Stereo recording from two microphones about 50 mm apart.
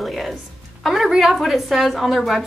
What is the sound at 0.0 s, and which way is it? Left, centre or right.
Music, centre.